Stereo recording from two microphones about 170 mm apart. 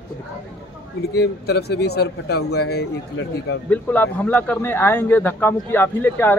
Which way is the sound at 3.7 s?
10° left (ahead or behind).